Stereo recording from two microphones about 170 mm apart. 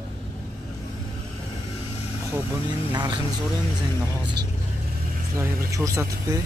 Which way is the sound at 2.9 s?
25° right (ahead or behind).